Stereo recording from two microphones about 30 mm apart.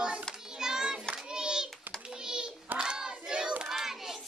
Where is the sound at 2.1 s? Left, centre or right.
Right.